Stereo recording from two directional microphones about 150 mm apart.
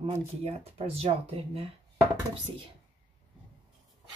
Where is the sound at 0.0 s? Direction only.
40° right (ahead or behind).